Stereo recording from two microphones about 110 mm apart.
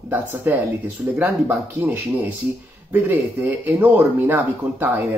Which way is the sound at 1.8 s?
15° right (ahead or behind).